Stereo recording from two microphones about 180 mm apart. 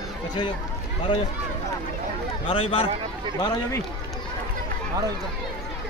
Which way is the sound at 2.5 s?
30° left (ahead or behind).